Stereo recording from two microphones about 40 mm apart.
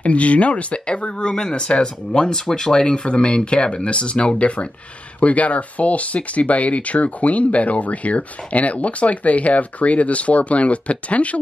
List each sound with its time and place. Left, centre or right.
0.0 s speech: left
1.3 s speech: centre; by 11.3 s left